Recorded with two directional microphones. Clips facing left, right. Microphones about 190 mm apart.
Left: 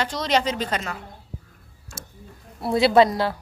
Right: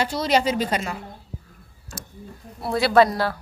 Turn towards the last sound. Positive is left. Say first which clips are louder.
# left 1 dB
turn(degrees=20)  # may be behind; listen again after turning